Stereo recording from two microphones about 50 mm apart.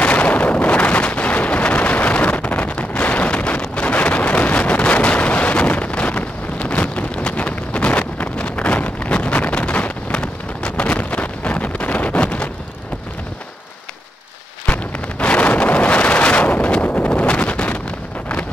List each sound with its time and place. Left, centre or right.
0.0 s wind noise: left
14.7 s wind noise: left